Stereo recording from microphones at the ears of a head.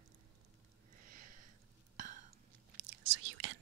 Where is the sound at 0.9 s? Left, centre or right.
Right.